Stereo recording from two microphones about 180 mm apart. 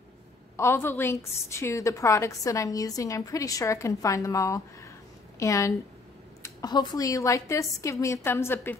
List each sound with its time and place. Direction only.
0.6 s a woman's voice: 15° left (ahead or behind)